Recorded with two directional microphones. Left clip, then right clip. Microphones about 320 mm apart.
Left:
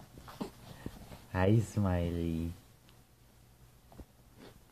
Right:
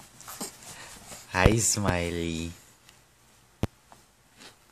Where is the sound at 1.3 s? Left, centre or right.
Centre.